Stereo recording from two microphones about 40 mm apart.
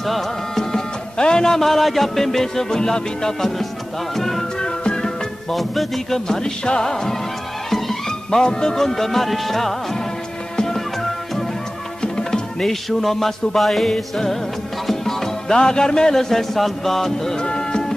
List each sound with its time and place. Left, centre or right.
0.0 s music: centre
0.7 s music: centre
6.2 s music: centre
8.3 s music: centre
14.9 s speech: centre
17.4 s music: left